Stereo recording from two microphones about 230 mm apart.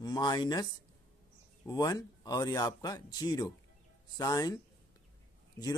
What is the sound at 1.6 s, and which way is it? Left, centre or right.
Speech, centre.